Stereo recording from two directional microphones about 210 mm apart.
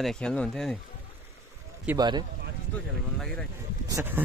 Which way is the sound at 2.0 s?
20° right (ahead or behind).